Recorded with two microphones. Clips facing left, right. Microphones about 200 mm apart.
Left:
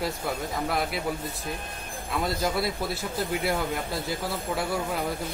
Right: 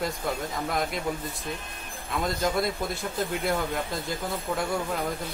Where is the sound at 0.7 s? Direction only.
5° left (ahead or behind).